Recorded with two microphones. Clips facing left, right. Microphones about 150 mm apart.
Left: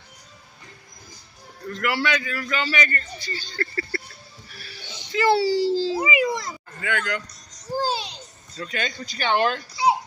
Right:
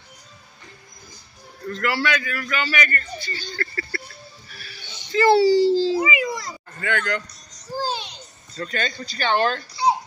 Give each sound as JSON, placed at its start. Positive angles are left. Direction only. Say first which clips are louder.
{"t": 1.7, "sound": "a man's voice", "louder": "right 1 dB", "side_deg": 15}
{"t": 5.1, "sound": "a child's voice", "louder": "right 4 dB", "side_deg": 5}
{"t": 5.9, "sound": "a sound", "louder": "even", "side_deg": 25}
{"t": 6.8, "sound": "speech", "louder": "right 2 dB", "side_deg": 5}
{"t": 8.5, "sound": "speech", "louder": "right 2 dB", "side_deg": 10}